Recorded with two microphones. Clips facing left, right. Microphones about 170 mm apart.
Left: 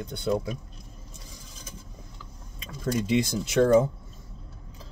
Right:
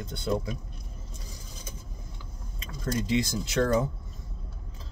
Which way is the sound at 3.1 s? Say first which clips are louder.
Left 3 dB; 15° left (ahead or behind).